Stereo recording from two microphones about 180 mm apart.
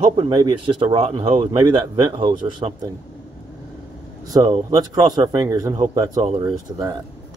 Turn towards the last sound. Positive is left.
turn(degrees=-25)  # may be behind; listen again after turning